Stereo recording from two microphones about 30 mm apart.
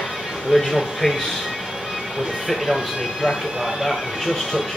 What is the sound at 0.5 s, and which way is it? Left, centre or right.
Speech, centre.